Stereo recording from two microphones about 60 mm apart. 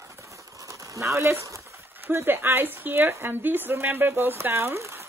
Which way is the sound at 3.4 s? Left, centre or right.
Right.